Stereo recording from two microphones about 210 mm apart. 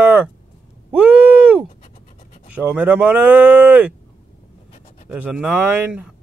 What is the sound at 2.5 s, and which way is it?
Speech, 5° right (ahead or behind).